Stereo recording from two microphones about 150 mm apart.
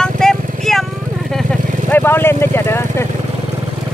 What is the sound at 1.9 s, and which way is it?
Vehicle, 15° left (ahead or behind).